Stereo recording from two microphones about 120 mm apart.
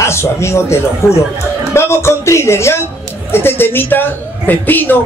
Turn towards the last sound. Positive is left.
turn(degrees=15)  # may be behind; listen again after turning